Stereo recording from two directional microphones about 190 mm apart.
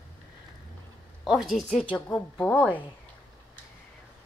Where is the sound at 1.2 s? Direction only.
Centre (ahead or behind).